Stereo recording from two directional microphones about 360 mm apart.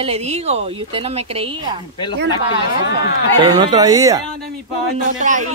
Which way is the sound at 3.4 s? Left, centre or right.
Centre.